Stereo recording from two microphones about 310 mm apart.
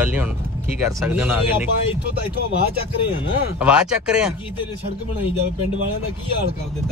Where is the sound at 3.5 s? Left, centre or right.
Centre.